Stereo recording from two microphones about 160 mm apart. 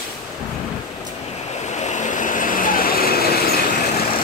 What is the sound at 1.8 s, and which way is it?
Vehicle, 50° left (ahead or behind).